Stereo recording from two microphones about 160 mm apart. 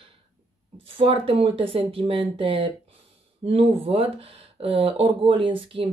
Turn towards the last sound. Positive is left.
turn(degrees=-35)  # may be behind; listen again after turning